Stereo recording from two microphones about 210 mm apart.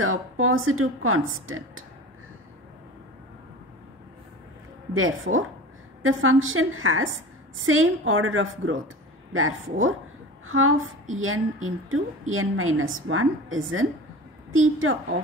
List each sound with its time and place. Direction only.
0.0 s a woman's voice: 80° right
4.9 s a woman's voice: 75° right (ahead or behind)